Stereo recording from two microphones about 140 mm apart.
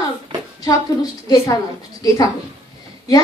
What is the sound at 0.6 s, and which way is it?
A woman's voice, 25° left (ahead or behind).